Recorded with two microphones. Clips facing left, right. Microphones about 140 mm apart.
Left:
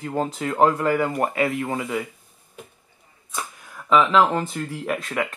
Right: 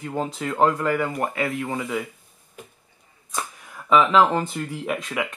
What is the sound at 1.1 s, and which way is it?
Speech, 20° left (ahead or behind).